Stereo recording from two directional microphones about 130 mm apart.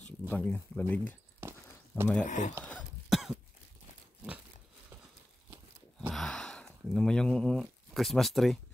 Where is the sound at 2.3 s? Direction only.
75° left (ahead or behind).